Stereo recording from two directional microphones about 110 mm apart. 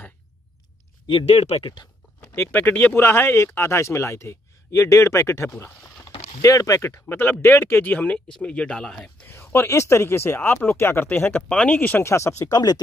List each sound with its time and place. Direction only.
1.2 s speech: 75° left (ahead or behind)
1.6 s speech: 45° left (ahead or behind)
2.3 s speech: 20° left (ahead or behind)
9.3 s speech: 20° left (ahead or behind)